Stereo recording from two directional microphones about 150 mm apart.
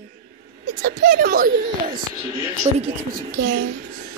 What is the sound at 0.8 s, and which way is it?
A child's voice, 70° right (ahead or behind).